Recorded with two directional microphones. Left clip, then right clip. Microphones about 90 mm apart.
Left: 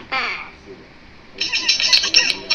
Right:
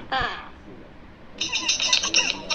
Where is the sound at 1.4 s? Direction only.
35° right (ahead or behind).